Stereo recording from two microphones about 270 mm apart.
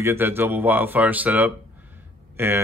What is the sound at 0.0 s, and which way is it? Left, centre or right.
Speech, centre.